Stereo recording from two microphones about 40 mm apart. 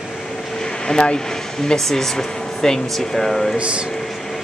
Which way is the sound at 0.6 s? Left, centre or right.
Centre.